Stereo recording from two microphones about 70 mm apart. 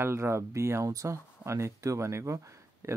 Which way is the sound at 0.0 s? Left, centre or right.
Right.